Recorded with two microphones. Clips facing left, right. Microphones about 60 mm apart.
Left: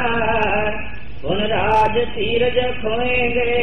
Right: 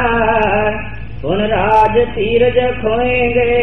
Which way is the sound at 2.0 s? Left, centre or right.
Centre.